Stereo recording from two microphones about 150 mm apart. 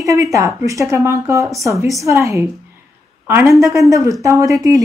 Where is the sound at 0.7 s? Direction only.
20° right (ahead or behind).